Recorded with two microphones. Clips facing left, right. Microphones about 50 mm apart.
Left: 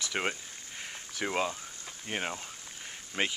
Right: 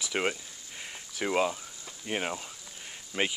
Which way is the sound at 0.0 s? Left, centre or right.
Centre.